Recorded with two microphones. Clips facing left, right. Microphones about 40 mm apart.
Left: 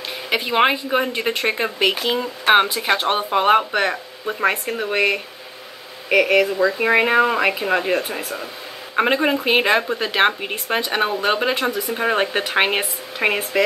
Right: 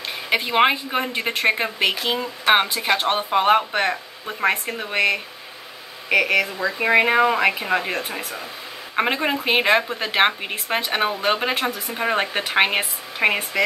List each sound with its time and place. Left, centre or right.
0.3 s speech: centre